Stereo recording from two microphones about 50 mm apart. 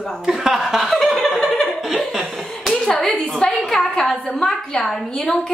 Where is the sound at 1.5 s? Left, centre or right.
Centre.